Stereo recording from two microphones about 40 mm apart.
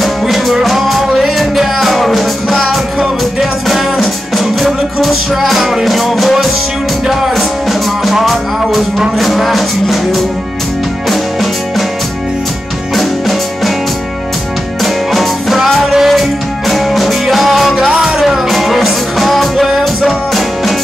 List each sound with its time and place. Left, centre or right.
0.0 s music: centre
12.9 s music: centre
14.8 s music: centre
17.7 s music: centre
18.2 s music: centre